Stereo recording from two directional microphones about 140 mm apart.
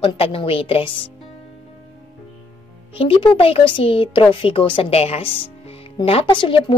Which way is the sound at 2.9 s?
40° left (ahead or behind).